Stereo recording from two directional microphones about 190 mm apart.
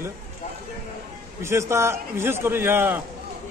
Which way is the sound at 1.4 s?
15° right (ahead or behind).